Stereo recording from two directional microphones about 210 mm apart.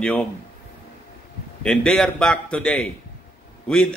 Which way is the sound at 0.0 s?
5° left (ahead or behind).